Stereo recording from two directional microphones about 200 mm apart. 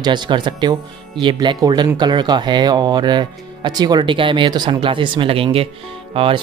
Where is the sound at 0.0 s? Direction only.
20° right (ahead or behind).